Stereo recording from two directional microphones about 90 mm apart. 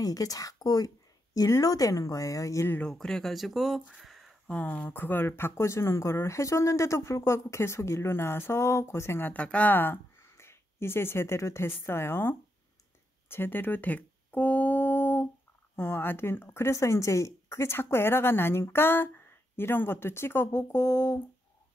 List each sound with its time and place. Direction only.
0.0 s a woman's voice: 40° left (ahead or behind)
2.9 s speech: 5° left (ahead or behind)
3.8 s a sound: 5° right (ahead or behind)
4.5 s speech: 15° left (ahead or behind)
9.3 s speech: 15° left (ahead or behind)
13.3 s humming: 25° left (ahead or behind)
15.7 s speech: 25° left (ahead or behind)